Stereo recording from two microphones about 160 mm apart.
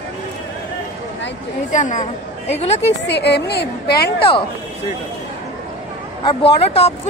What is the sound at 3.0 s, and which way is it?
A woman's voice, 90° left.